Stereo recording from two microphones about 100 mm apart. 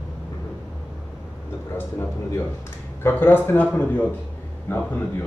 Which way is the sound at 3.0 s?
20° left (ahead or behind).